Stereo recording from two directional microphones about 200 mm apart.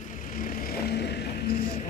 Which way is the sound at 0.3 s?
40° left (ahead or behind).